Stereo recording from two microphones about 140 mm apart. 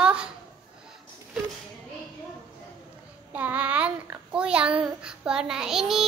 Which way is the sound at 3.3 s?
10° right (ahead or behind).